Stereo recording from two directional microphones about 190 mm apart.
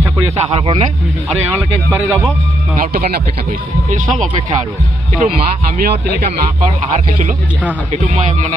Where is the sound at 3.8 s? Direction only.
40° right (ahead or behind).